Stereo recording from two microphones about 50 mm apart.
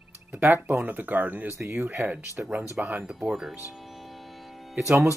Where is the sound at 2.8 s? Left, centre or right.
Right.